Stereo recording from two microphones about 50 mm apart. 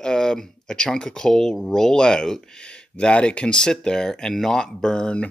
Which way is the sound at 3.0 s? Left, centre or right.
Left.